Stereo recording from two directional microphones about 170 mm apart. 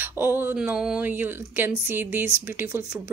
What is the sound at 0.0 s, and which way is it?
Speech, 10° right (ahead or behind).